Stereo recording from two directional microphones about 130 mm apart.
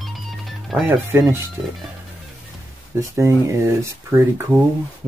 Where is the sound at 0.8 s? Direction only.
15° right (ahead or behind).